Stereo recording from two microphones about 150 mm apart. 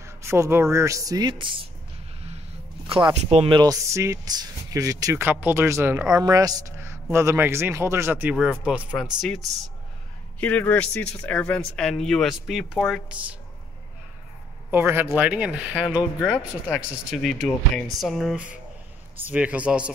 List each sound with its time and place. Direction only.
0.0 s speech: 20° right (ahead or behind); by 1.7 s 35° right (ahead or behind)
2.9 s speech: 35° right (ahead or behind); by 9.4 s centre (ahead or behind)
10.4 s speech: 10° left (ahead or behind); by 13.4 s 10° right (ahead or behind)
14.7 s speech: 15° right (ahead or behind)
16.2 s speech: 10° left (ahead or behind)
16.8 s speech: 5° right (ahead or behind)